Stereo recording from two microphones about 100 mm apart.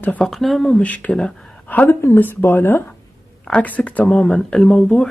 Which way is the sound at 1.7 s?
20° left (ahead or behind).